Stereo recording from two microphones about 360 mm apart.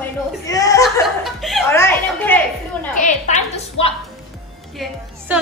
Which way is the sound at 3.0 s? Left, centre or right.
Centre.